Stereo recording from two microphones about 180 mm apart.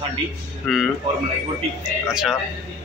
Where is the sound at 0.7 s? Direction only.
Centre (ahead or behind).